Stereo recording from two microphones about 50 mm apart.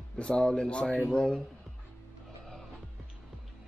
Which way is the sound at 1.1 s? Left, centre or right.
Centre.